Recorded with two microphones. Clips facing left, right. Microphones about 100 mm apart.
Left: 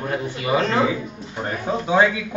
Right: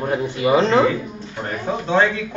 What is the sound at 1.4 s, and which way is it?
Speech, 10° left (ahead or behind).